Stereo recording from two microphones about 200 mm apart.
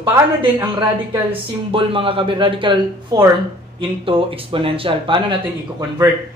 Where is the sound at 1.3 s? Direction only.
25° right (ahead or behind).